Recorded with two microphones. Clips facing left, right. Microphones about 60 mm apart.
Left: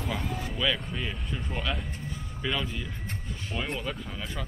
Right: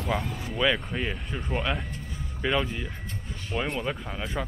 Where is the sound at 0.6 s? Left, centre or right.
Right.